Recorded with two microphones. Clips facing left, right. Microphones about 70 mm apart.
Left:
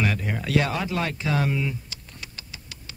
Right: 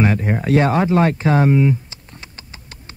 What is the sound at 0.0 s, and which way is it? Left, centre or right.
Speech, right.